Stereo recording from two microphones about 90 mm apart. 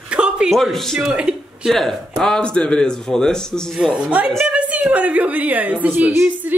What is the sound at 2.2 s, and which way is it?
Speech, 10° left (ahead or behind).